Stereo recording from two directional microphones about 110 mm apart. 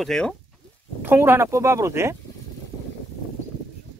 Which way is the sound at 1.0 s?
20° right (ahead or behind).